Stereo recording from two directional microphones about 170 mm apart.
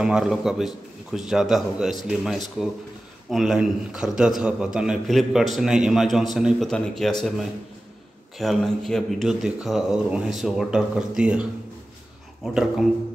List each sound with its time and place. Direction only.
0.0 s a man's voice: 5° right (ahead or behind)
12.4 s a man's voice: centre (ahead or behind)